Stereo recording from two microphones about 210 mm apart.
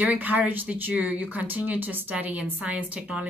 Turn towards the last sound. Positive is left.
turn(degrees=-5)  # may be behind; listen again after turning